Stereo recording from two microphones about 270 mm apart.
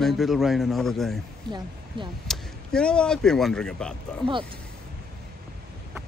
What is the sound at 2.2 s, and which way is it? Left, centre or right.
Speech, centre.